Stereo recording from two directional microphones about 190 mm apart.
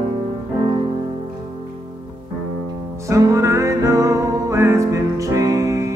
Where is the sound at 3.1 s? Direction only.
15° right (ahead or behind).